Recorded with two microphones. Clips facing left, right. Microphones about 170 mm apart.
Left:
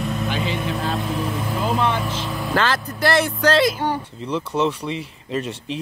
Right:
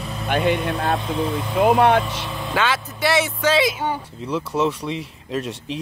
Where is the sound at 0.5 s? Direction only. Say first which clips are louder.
Right 2 dB; centre (ahead or behind).